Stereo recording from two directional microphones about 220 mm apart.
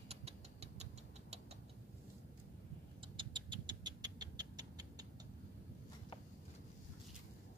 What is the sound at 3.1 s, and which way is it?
Cat, 20° right (ahead or behind).